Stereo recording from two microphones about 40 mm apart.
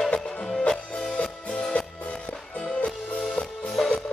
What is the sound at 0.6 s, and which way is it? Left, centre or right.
Music, centre.